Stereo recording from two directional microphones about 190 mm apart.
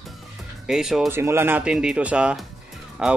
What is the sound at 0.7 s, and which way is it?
Speech, centre (ahead or behind).